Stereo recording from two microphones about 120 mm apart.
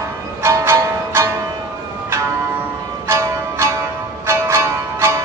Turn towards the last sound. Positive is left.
turn(degrees=-20)  # may be behind; listen again after turning